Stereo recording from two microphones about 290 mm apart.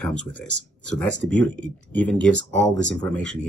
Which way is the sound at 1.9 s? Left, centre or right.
Centre.